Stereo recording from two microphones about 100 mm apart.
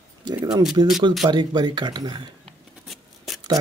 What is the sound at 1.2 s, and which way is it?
Speech, 45° right (ahead or behind).